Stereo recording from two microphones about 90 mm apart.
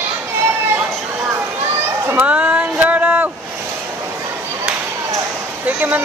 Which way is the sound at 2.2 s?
15° right (ahead or behind).